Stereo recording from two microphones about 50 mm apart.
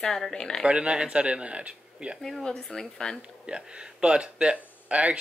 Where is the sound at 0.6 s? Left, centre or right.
Right.